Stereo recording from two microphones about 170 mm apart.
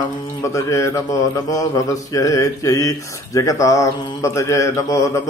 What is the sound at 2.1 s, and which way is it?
Mantra, 20° left (ahead or behind).